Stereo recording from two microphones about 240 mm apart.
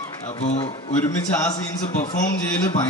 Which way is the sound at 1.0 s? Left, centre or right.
Centre.